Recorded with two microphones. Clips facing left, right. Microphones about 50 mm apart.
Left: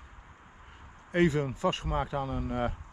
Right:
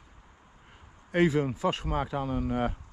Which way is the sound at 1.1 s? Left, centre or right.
Right.